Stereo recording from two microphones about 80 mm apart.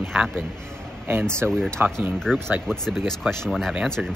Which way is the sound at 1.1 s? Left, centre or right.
Right.